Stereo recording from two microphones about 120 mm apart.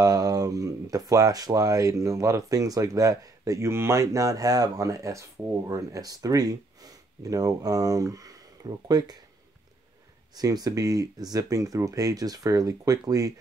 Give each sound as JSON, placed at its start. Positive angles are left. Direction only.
{"t": 0.0, "sound": "speech", "side_deg": -30}
{"t": 10.3, "sound": "speech", "side_deg": -35}